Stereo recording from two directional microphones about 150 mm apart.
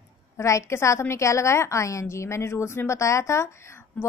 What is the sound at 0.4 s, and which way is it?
A woman's voice, 20° left (ahead or behind).